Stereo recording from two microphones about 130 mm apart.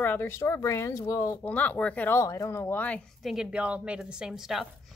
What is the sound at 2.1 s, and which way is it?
Speech, 25° left (ahead or behind).